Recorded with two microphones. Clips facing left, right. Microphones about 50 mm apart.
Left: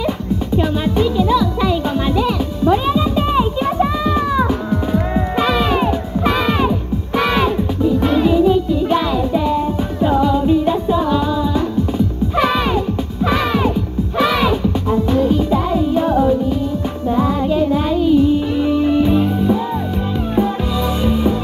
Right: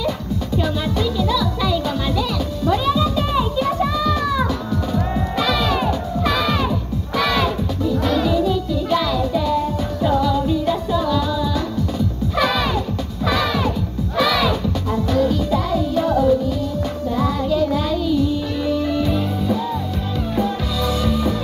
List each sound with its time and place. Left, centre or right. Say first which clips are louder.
0.6 s music: left 4 dB; left
21.0 s music: left 6 dB; left